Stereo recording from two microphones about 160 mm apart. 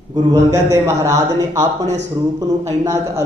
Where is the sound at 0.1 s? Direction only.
25° right (ahead or behind).